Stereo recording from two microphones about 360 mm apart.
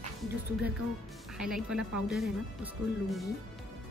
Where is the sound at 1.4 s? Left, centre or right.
Centre.